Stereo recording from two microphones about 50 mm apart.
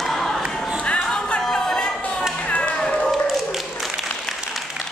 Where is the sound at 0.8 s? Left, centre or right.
Left.